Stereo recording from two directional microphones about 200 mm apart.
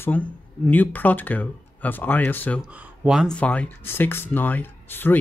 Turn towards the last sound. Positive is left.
turn(degrees=10)  # may be behind; listen again after turning